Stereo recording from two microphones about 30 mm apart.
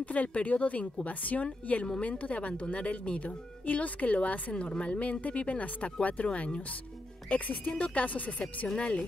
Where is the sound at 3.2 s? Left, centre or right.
Left.